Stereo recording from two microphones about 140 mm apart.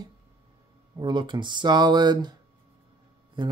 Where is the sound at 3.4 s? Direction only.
30° right (ahead or behind).